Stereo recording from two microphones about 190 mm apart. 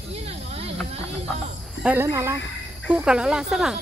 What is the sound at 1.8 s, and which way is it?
Speech, 10° right (ahead or behind).